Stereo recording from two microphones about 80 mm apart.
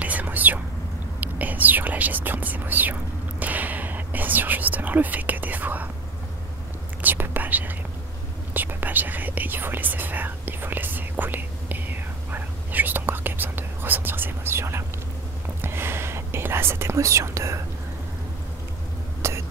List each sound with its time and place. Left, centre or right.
0.0 s whispering: centre
7.0 s whispering: right
19.2 s cough: right